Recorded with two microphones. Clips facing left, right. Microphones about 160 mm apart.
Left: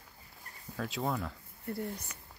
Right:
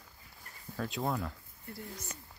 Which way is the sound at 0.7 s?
Centre (ahead or behind).